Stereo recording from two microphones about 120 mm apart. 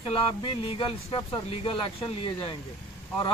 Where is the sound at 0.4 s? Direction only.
45° left (ahead or behind).